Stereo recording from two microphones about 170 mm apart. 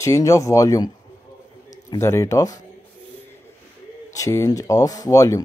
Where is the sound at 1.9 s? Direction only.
15° left (ahead or behind).